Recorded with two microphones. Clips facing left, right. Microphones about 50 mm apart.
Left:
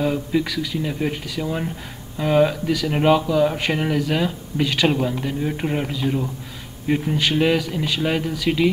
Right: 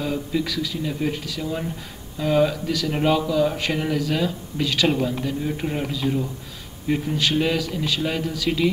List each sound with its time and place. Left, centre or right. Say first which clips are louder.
0.0 s a man's voice: left 4 dB; centre